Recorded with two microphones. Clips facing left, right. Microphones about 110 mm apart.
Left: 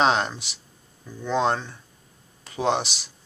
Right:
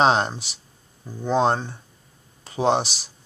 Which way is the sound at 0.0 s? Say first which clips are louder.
Right 2 dB; 35° right (ahead or behind).